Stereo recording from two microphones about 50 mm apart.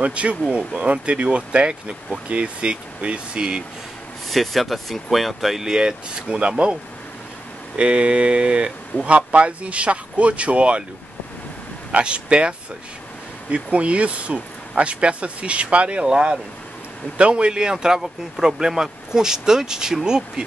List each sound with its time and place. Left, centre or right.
0.0 s speech: right
4.3 s speech: centre; by 10.8 s right
11.9 s speech: right